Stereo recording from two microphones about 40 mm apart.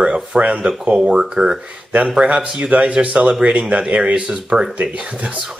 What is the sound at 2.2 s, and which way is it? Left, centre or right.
Speech, right.